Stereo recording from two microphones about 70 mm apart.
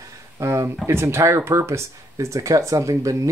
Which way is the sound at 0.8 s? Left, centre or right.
Right.